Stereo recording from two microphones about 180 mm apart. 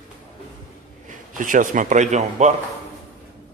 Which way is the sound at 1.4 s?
45° right (ahead or behind).